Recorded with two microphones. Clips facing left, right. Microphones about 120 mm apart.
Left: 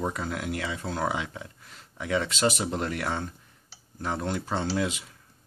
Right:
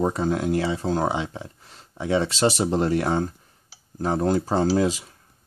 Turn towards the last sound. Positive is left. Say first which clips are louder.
# right 8 dB
turn(degrees=-35)  # may be behind; listen again after turning